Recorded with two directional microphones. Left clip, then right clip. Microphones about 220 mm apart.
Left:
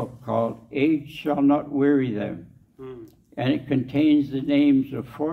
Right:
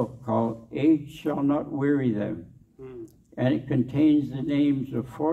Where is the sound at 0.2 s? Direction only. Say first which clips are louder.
Left 6 dB; 20° left (ahead or behind).